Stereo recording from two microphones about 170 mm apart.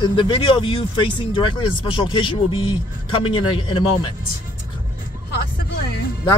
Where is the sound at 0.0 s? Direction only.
30° left (ahead or behind).